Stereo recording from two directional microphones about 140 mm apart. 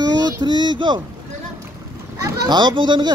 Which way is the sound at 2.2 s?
30° right (ahead or behind).